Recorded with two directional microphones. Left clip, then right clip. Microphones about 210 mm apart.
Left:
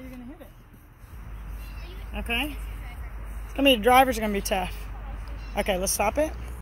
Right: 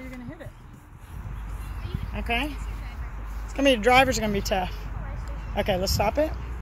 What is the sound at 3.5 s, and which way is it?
Speech, 35° left (ahead or behind).